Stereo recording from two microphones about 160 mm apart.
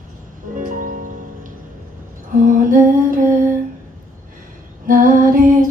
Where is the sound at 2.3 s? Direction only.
55° right (ahead or behind).